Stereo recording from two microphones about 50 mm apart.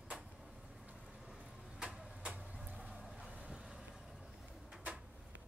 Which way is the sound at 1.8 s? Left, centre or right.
Right.